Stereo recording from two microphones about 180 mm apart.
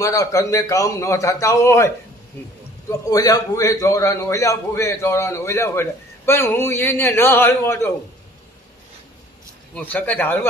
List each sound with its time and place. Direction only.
0.0 s a man's voice: 20° left (ahead or behind)
9.8 s a man's voice: 10° left (ahead or behind)